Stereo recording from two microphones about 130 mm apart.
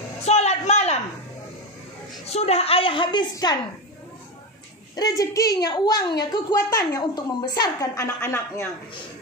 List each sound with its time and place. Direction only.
0.2 s a sound: 55° left (ahead or behind)
2.2 s a woman's voice: 55° left (ahead or behind); by 3.5 s 35° left (ahead or behind)
4.9 s a woman's voice: 30° left (ahead or behind)
8.2 s a man's voice: 15° left (ahead or behind)